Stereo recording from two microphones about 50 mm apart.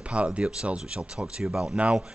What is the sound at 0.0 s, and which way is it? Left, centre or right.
Speech, right.